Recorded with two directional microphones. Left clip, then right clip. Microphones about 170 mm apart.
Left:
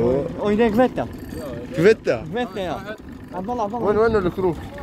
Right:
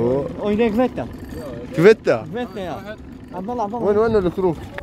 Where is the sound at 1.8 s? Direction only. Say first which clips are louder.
Right 3 dB; 45° right (ahead or behind).